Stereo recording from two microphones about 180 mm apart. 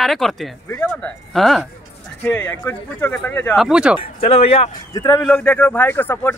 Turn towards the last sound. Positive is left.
turn(degrees=10)  # may be behind; listen again after turning